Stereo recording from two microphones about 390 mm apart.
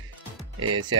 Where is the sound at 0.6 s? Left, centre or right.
Right.